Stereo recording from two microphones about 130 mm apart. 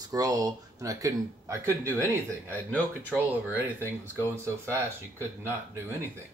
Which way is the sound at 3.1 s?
15° right (ahead or behind).